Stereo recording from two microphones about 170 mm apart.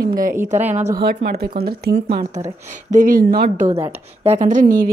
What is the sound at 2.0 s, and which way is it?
Speech, 35° right (ahead or behind).